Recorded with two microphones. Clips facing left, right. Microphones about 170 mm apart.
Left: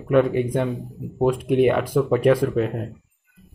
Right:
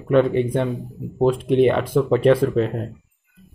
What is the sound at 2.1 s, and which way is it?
Speech, 10° left (ahead or behind).